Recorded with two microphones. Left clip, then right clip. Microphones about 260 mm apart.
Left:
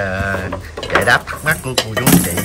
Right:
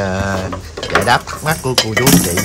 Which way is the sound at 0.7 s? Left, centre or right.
Centre.